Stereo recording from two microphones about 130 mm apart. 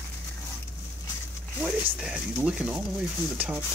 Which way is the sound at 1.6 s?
5° right (ahead or behind).